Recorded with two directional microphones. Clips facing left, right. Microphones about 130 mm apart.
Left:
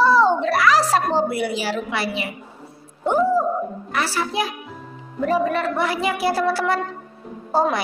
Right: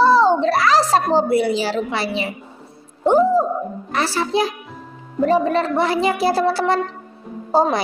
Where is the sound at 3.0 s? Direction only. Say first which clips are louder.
Right 4 dB; 30° right (ahead or behind).